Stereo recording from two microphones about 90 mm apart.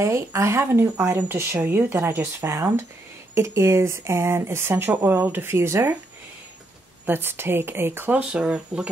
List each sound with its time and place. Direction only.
0.0 s speech: 35° right (ahead or behind)
7.1 s speech: 25° right (ahead or behind)
8.2 s speech: 15° right (ahead or behind)